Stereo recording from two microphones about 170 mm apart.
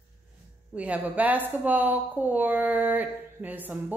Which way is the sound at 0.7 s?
10° right (ahead or behind).